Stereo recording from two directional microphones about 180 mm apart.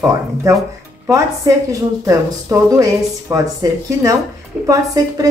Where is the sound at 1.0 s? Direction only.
20° right (ahead or behind).